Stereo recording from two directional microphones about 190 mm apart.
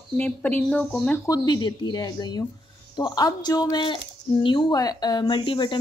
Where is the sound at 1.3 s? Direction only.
20° left (ahead or behind).